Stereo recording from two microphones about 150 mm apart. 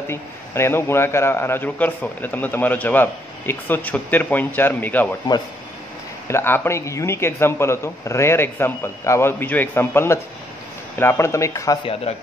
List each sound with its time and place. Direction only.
0.1 s a man's voice: 15° left (ahead or behind)
6.2 s a man's voice: 15° left (ahead or behind)